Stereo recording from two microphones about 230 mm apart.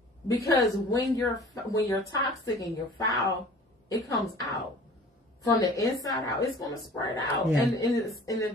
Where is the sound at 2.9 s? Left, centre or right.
Centre.